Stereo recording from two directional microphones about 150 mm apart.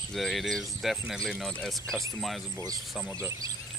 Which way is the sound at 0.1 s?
Centre (ahead or behind).